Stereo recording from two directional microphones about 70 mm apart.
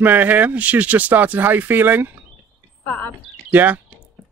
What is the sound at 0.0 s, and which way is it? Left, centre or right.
Speech, right.